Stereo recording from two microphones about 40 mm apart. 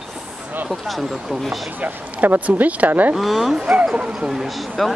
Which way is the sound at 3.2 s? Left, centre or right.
Centre.